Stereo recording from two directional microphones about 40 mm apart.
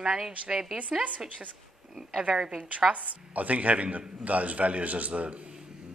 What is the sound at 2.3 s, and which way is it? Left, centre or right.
Speech, right.